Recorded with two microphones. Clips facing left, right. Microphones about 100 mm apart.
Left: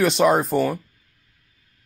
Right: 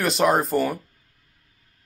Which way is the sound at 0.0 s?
Centre (ahead or behind).